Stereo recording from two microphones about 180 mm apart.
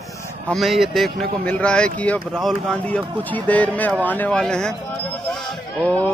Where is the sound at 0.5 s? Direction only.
Centre (ahead or behind).